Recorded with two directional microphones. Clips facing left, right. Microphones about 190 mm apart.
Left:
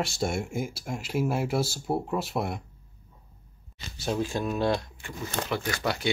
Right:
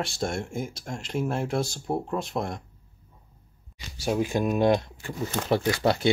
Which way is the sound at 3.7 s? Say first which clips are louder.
Right 3 dB; 10° right (ahead or behind).